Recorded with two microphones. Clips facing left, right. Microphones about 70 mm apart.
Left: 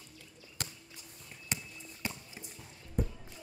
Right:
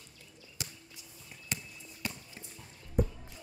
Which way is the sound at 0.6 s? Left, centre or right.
Left.